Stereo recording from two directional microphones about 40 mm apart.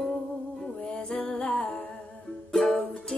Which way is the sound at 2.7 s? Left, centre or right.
Centre.